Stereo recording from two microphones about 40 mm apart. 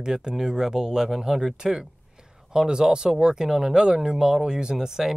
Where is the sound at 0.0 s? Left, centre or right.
Centre.